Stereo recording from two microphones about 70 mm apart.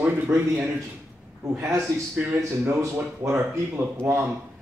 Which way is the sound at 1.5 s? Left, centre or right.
Right.